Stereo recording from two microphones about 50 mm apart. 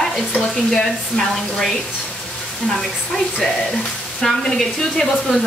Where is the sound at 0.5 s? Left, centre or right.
Centre.